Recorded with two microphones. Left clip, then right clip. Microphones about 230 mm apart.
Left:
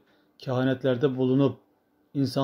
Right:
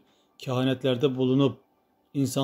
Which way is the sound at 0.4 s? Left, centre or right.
Centre.